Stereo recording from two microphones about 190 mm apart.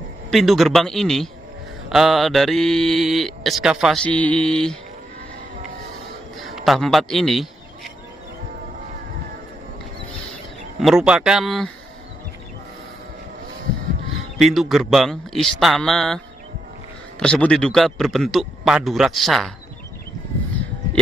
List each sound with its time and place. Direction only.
0.3 s speech: centre (ahead or behind)
6.4 s a sound: centre (ahead or behind)
10.8 s speech: centre (ahead or behind)
14.1 s speech: centre (ahead or behind)
17.2 s speech: 5° left (ahead or behind)